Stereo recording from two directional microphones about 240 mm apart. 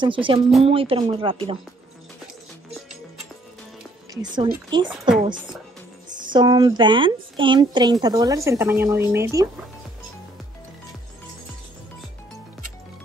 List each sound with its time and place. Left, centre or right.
0.0 s speech: right
4.1 s speech: centre
6.1 s a woman's voice: centre